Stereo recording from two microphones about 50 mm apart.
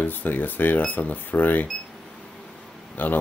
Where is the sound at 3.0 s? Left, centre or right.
Left.